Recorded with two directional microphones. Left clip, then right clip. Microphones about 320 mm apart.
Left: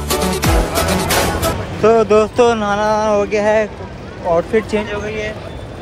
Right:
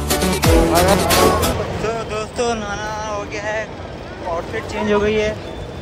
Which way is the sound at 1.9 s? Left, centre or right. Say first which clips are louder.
Left 12 dB; centre.